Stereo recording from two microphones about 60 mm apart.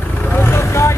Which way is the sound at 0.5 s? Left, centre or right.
Left.